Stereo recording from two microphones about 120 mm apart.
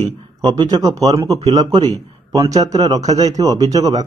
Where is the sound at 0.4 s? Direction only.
35° right (ahead or behind).